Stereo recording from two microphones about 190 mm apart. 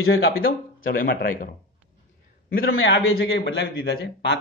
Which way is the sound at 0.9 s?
50° left (ahead or behind).